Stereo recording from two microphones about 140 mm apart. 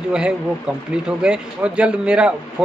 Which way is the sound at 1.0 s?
5° right (ahead or behind).